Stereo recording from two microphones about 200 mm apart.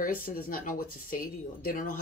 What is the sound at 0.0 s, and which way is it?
Speech, 45° left (ahead or behind).